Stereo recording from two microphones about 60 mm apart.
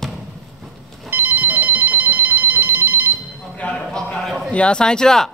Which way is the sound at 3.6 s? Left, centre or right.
Left.